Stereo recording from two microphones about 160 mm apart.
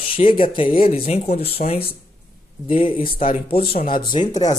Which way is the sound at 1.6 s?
55° left (ahead or behind).